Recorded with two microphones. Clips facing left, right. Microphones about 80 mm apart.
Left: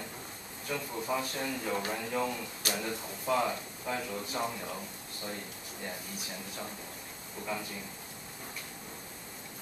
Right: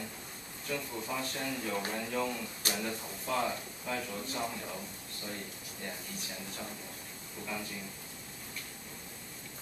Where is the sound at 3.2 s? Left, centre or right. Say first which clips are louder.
Left 3 dB; centre.